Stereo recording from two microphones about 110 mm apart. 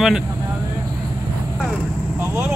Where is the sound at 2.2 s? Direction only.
15° right (ahead or behind).